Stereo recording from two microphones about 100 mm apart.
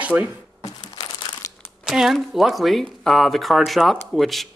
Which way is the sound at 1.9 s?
5° right (ahead or behind).